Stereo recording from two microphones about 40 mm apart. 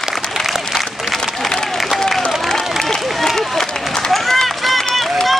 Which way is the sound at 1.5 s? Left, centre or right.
Centre.